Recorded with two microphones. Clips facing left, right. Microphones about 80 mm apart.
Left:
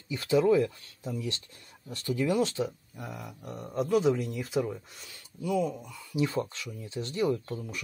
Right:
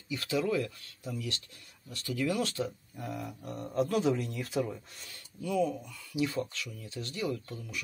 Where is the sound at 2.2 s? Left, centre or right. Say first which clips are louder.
Left 4 dB; left.